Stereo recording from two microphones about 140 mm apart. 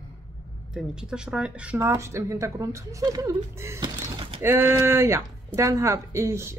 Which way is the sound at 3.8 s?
35° right (ahead or behind).